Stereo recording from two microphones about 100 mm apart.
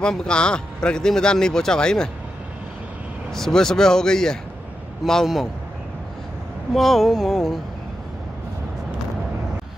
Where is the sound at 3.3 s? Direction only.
5° left (ahead or behind).